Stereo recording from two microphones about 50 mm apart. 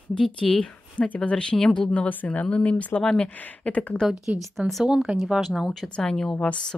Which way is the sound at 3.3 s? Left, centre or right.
Left.